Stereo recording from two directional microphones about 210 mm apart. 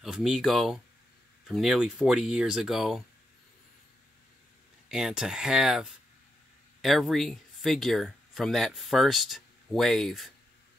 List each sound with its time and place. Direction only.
0.0 s speech: centre (ahead or behind)
4.8 s speech: centre (ahead or behind)